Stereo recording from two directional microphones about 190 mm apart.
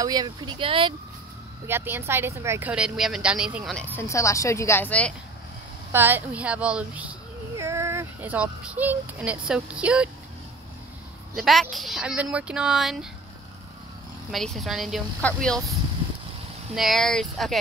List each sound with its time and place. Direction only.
0.0 s speech: 20° right (ahead or behind)
1.7 s speech: 10° right (ahead or behind)
3.8 s a woman's voice: 10° left (ahead or behind)
5.9 s speech: 10° right (ahead or behind)
11.3 s speech: centre (ahead or behind)
14.3 s speech: centre (ahead or behind)
16.7 s speech: centre (ahead or behind)